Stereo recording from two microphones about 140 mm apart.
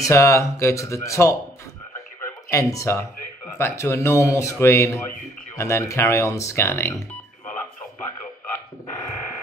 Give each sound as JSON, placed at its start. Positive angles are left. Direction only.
{"t": 0.0, "sound": "a man's voice", "side_deg": 20}
{"t": 2.5, "sound": "a man's voice", "side_deg": 25}
{"t": 8.5, "sound": "a sound", "side_deg": 20}